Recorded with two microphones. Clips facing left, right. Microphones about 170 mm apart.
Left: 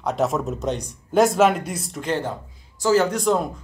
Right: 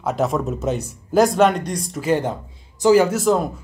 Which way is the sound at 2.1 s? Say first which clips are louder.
Right 5 dB; 15° right (ahead or behind).